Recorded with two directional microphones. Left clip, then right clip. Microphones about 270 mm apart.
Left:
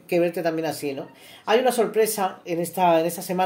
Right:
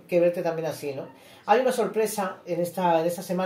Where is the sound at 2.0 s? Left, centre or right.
Left.